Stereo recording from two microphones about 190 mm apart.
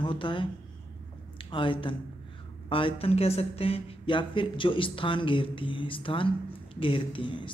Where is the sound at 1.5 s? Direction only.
25° left (ahead or behind).